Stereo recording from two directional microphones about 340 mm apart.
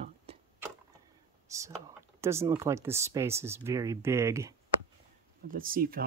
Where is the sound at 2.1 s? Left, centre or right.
Centre.